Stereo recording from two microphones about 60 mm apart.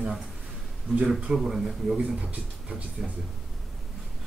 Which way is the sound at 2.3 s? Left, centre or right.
Right.